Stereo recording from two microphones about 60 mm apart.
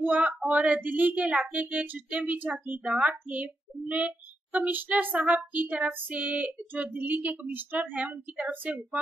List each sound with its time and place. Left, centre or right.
0.0 s female singing: right
2.8 s female singing: centre